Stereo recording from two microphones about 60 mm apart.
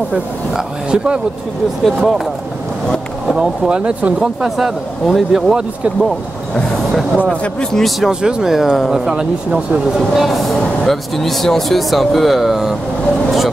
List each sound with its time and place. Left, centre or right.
0.9 s speech: centre
1.9 s speech: centre
3.3 s speech: centre
7.7 s speech: centre
8.1 s speech: centre